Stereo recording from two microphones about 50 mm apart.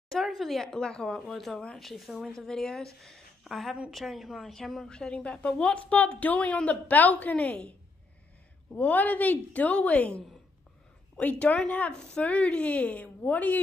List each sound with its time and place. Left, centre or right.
0.3 s speech: centre
0.7 s speech: centre
1.0 s speech: centre
4.8 s a woman's voice: centre; by 7.5 s left
8.7 s a woman's voice: left
11.9 s speech: centre
12.2 s a woman's voice: left